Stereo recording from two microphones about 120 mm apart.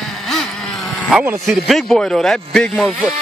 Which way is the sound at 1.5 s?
Centre (ahead or behind).